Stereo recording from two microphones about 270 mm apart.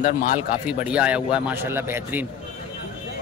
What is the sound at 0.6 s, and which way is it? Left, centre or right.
Speech, centre.